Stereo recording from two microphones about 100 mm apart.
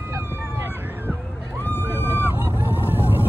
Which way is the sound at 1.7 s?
25° left (ahead or behind).